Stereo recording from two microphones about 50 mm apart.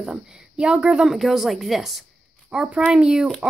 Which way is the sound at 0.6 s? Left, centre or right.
Right.